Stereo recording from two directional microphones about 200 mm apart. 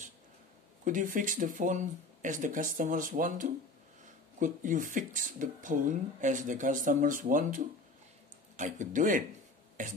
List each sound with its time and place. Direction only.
0.8 s speech: 40° right (ahead or behind)